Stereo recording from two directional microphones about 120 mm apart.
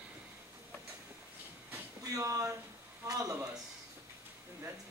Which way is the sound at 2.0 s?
30° right (ahead or behind).